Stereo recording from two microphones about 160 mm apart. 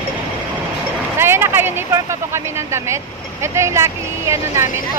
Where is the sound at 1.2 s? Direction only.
15° right (ahead or behind).